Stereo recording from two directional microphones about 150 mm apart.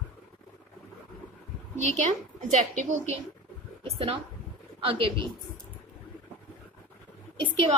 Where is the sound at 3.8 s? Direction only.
40° right (ahead or behind).